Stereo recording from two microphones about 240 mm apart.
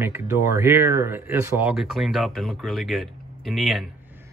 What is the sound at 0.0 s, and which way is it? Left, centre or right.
Speech, centre.